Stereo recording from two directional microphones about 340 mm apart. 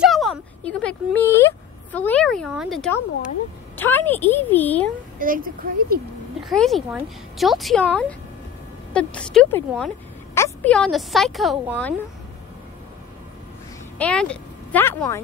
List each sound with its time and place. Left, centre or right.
0.0 s a sound: centre
3.7 s speech: centre
5.2 s speech: right
6.4 s speech: centre
13.9 s speech: centre